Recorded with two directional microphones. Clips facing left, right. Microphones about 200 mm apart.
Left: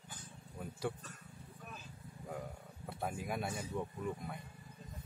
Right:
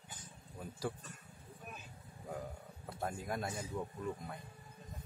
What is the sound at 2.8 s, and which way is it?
Speech, centre (ahead or behind).